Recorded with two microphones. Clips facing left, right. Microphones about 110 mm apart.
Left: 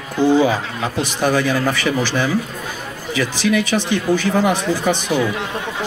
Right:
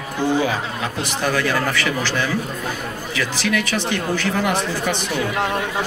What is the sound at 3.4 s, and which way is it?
Speech, 15° left (ahead or behind).